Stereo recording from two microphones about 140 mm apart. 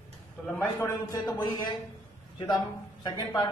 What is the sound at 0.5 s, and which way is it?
A man's voice, 20° left (ahead or behind).